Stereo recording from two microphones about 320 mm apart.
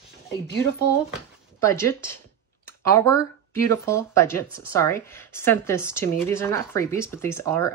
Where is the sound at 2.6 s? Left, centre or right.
Centre.